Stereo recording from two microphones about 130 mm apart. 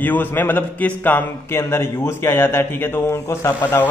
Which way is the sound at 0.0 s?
15° left (ahead or behind).